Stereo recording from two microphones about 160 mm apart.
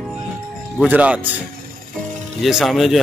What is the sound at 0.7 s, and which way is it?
Speech, 10° right (ahead or behind).